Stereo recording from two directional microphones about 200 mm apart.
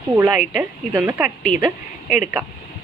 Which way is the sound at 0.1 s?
10° right (ahead or behind).